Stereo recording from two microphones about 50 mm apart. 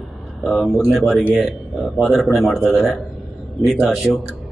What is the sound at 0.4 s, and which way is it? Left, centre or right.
A man's voice, centre.